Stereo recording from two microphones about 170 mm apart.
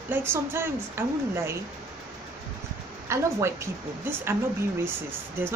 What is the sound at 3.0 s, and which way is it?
Speech, 15° right (ahead or behind).